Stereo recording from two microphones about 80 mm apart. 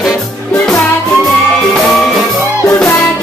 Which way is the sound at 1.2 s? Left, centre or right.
Centre.